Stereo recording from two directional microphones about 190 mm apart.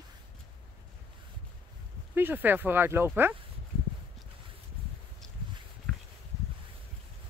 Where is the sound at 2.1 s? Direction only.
10° right (ahead or behind).